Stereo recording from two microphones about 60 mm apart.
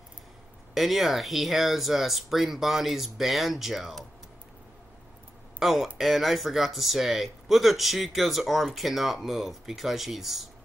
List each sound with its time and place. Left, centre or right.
0.7 s speech: centre
5.6 s speech: centre